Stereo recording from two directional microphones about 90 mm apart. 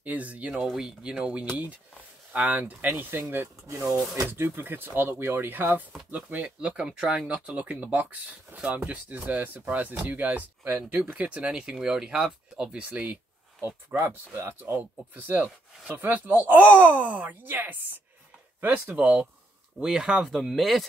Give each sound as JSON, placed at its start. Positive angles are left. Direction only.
{"t": 0.0, "sound": "speech", "side_deg": -15}
{"t": 3.8, "sound": "speech", "side_deg": -5}
{"t": 4.3, "sound": "speech", "side_deg": -25}